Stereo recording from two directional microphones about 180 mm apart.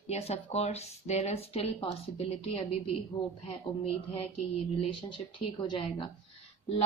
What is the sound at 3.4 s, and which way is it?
Speech, 30° left (ahead or behind).